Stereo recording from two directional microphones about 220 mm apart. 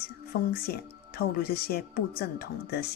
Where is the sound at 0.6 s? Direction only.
45° left (ahead or behind).